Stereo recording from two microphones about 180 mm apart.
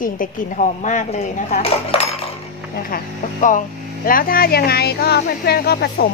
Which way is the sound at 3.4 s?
50° left (ahead or behind).